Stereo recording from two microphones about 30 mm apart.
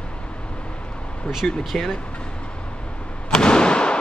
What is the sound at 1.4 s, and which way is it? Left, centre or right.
Speech, left.